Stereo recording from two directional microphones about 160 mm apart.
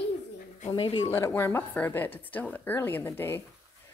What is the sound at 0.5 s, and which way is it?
Speech, 40° left (ahead or behind).